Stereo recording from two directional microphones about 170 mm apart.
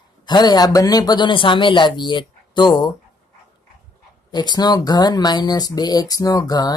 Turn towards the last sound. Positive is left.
turn(degrees=20)  # may be behind; listen again after turning